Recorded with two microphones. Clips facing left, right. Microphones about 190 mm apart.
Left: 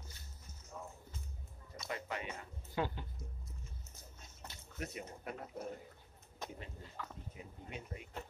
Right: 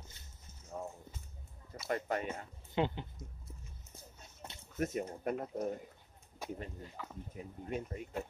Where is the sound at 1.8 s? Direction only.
45° right (ahead or behind).